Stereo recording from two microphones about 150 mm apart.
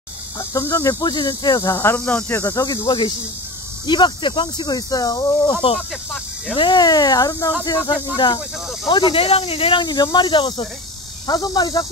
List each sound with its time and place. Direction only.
0.4 s speech: 20° left (ahead or behind)